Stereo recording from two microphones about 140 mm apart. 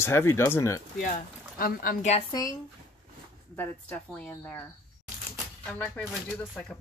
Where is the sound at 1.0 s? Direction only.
70° left (ahead or behind).